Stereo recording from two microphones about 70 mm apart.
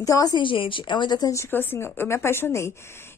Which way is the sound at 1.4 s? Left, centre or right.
Left.